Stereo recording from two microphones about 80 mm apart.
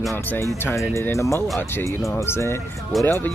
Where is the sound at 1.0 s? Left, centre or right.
Left.